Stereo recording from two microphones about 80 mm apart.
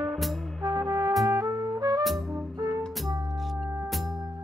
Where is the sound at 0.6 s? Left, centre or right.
Right.